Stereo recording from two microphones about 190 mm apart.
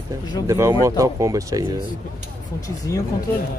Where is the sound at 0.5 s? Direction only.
15° right (ahead or behind).